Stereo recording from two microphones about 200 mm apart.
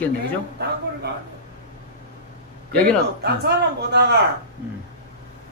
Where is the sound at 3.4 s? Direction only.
55° right (ahead or behind).